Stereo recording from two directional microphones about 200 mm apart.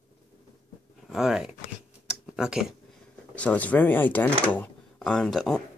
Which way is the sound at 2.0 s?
5° right (ahead or behind).